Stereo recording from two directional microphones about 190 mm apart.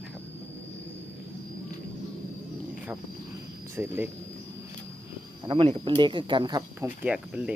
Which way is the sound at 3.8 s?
10° right (ahead or behind).